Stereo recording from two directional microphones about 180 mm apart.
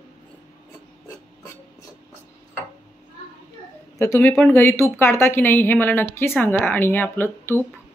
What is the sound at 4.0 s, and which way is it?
Speech, 15° left (ahead or behind).